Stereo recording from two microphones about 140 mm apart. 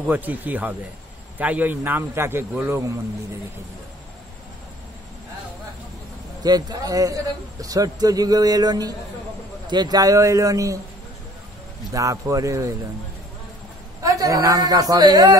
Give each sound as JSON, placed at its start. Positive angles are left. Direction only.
{"t": 0.0, "sound": "a man's voice", "side_deg": -10}
{"t": 6.4, "sound": "a man's voice", "side_deg": -30}
{"t": 11.9, "sound": "a man's voice", "side_deg": -25}
{"t": 14.0, "sound": "a man's voice", "side_deg": -25}